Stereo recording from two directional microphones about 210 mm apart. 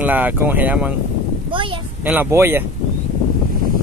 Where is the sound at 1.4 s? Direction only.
25° right (ahead or behind).